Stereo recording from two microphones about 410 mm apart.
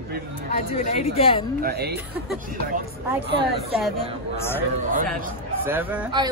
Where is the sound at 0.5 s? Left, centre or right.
Centre.